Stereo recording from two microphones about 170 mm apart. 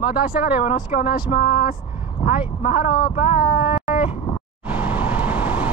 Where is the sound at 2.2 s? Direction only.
35° left (ahead or behind).